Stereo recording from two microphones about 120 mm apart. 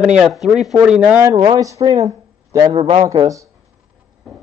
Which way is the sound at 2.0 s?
30° right (ahead or behind).